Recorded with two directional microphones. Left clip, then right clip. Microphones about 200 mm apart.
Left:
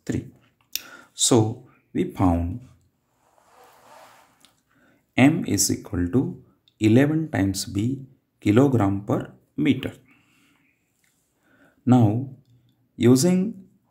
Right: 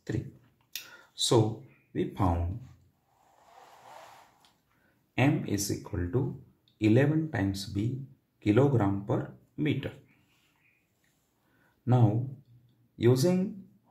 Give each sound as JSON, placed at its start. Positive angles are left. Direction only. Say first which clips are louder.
{"t": 0.1, "sound": "speech", "louder": "left 6 dB", "side_deg": 45}
{"t": 0.7, "sound": "clicking", "louder": "left 8 dB", "side_deg": 45}
{"t": 2.0, "sound": "speech", "louder": "left 7 dB", "side_deg": 40}
{"t": 5.1, "sound": "speech", "louder": "left 9 dB", "side_deg": 45}
{"t": 11.8, "sound": "speech", "louder": "left 9 dB", "side_deg": 45}